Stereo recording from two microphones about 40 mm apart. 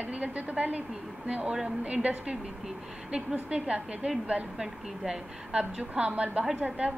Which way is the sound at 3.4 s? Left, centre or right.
Right.